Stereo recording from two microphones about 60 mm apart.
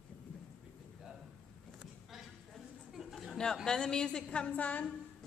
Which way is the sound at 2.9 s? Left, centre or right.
Centre.